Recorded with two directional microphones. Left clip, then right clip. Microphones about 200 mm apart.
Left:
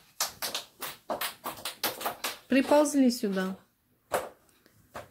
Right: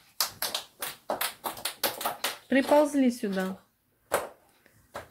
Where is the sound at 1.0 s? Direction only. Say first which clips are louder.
Right 2 dB; 45° right (ahead or behind).